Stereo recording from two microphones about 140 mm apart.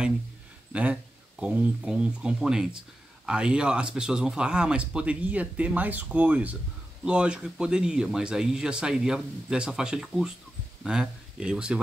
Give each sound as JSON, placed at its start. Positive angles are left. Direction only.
{"t": 1.4, "sound": "speech", "side_deg": -5}